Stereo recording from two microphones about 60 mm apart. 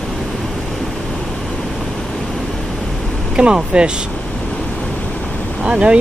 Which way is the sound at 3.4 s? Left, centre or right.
Centre.